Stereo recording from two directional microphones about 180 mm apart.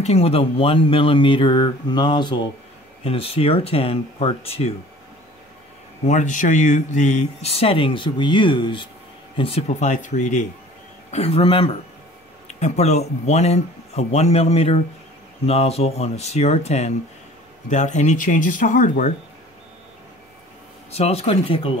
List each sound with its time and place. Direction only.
0.0 s speech: 35° left (ahead or behind)
6.0 s speech: 45° left (ahead or behind)
20.9 s speech: 35° left (ahead or behind)